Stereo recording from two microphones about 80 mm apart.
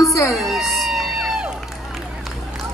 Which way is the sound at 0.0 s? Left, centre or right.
Left.